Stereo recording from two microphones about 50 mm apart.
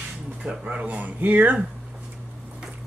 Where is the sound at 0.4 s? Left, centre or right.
Right.